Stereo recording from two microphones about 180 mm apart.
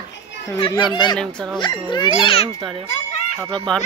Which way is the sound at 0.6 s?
25° left (ahead or behind).